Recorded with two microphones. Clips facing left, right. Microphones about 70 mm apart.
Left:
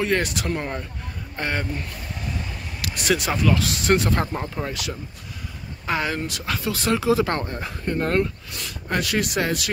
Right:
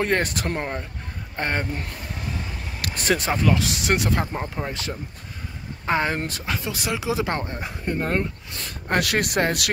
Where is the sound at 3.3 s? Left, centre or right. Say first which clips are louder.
Even; right.